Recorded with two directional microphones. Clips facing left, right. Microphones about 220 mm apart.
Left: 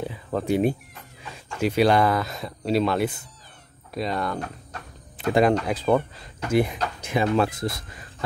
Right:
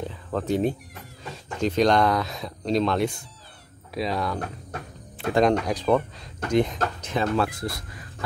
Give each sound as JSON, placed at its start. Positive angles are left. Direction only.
{"t": 0.0, "sound": "speech", "side_deg": 10}
{"t": 7.4, "sound": "speech", "side_deg": 20}